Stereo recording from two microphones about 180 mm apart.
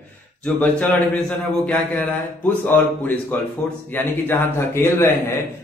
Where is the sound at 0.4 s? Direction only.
10° left (ahead or behind).